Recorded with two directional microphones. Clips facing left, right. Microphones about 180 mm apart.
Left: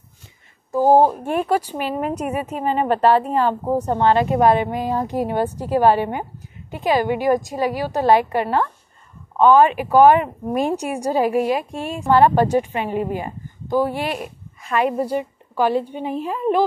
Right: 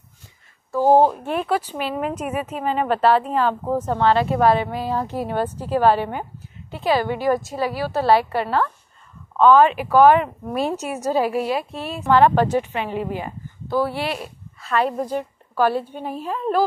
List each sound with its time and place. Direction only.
0.7 s a woman's voice: 15° left (ahead or behind)
2.0 s speech: 40° left (ahead or behind)
3.0 s a woman's voice: 10° left (ahead or behind)
4.1 s speech: 45° left (ahead or behind)
4.4 s a woman's voice: 15° left (ahead or behind)
9.3 s a sound: 15° left (ahead or behind)
9.8 s a woman's voice: 15° left (ahead or behind)
12.5 s speech: 45° left (ahead or behind)
13.7 s speech: 15° left (ahead or behind)
13.9 s speech: 45° left (ahead or behind)
14.2 s a woman's voice: 15° left (ahead or behind)